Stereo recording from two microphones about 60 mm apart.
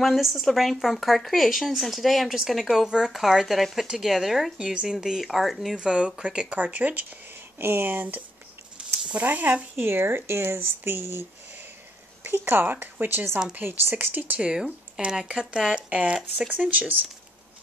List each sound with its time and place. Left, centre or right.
0.0 s speech: centre
5.8 s speech: centre
6.6 s speech: right
7.5 s speech: right
9.2 s speech: right
10.3 s speech: right
14.4 s speech: centre